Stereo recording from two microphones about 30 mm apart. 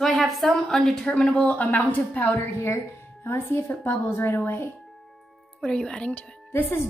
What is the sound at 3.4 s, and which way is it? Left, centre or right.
Speech, left.